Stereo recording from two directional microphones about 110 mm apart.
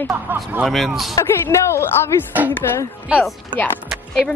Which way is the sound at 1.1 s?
25° left (ahead or behind).